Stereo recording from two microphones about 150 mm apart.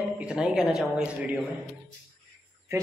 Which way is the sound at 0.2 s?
5° right (ahead or behind).